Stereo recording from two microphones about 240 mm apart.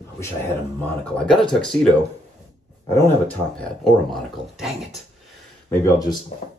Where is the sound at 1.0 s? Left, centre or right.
Centre.